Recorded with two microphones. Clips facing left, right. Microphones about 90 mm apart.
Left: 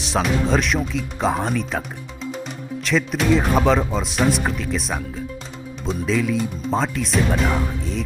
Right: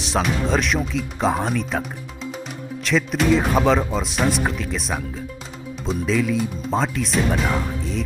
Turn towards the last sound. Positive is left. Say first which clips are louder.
# left 1 dB
turn(degrees=0)  # may be behind; listen again after turning